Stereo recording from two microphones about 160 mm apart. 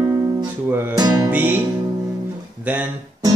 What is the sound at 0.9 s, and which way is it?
Music, 25° right (ahead or behind).